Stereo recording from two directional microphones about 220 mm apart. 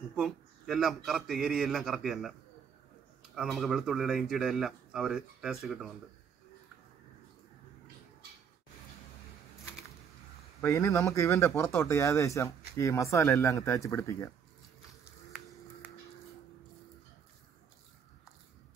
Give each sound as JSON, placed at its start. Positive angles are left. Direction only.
{"t": 0.1, "sound": "speech", "side_deg": 0}
{"t": 3.3, "sound": "speech", "side_deg": 0}
{"t": 10.6, "sound": "speech", "side_deg": 15}